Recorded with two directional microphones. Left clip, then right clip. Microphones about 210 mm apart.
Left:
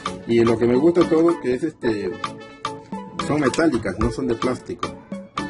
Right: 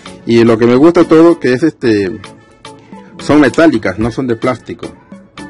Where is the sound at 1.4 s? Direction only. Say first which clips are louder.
Right 11 dB; 45° right (ahead or behind).